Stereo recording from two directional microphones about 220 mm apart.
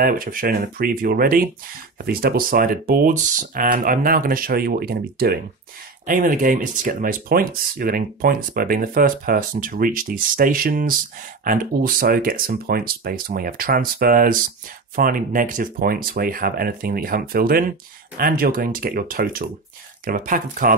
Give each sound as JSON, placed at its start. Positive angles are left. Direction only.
{"t": 0.0, "sound": "speech", "side_deg": -40}